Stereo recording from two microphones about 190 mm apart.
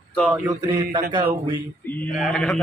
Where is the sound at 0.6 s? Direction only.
25° right (ahead or behind).